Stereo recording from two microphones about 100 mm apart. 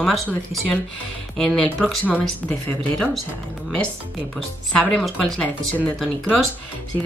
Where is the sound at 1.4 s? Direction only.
5° left (ahead or behind).